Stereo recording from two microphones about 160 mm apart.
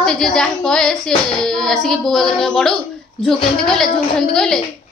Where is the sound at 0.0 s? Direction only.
5° left (ahead or behind).